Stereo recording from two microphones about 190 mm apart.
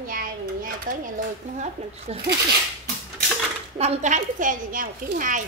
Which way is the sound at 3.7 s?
35° right (ahead or behind).